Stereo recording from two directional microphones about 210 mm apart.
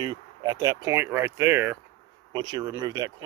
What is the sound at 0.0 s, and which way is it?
Speech, 20° right (ahead or behind).